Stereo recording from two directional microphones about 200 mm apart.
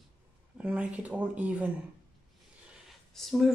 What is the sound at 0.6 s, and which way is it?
Speech, 5° right (ahead or behind).